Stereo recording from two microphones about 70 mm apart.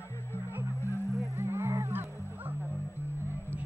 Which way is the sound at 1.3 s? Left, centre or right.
Right.